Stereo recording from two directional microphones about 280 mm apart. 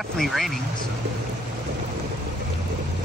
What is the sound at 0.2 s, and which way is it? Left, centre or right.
Speech, centre.